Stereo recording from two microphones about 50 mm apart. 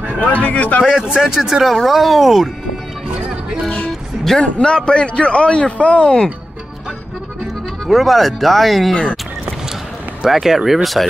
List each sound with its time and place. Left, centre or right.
0.5 s speech: left
0.8 s speech: centre
1.6 s speech: centre
4.4 s speech: centre
7.8 s speech: centre
10.2 s speech: centre